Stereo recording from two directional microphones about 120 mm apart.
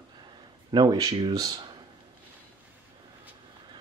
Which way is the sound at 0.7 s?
35° right (ahead or behind).